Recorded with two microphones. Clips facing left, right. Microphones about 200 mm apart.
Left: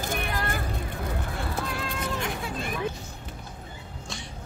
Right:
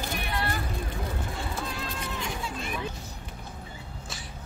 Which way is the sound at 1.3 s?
65° left (ahead or behind).